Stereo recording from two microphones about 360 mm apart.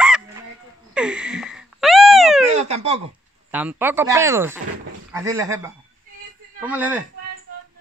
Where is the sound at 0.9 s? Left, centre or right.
Centre.